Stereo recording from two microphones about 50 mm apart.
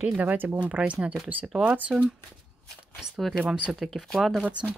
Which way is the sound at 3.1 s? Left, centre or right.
Centre.